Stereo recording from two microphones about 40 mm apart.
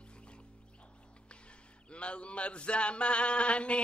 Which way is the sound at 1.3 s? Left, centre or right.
Left.